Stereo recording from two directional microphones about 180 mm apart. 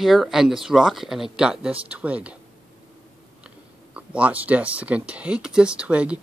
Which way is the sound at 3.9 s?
5° right (ahead or behind).